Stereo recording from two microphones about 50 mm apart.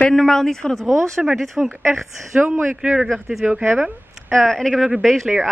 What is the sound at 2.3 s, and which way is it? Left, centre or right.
Speech, right.